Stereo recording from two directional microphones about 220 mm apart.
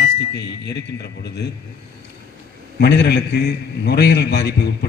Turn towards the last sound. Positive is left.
turn(degrees=50)  # may be behind; listen again after turning